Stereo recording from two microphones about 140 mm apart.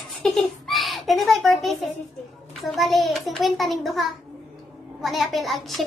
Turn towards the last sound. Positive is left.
turn(degrees=0)  # may be behind; listen again after turning